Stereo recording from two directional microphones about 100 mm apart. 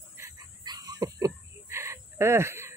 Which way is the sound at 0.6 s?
40° right (ahead or behind).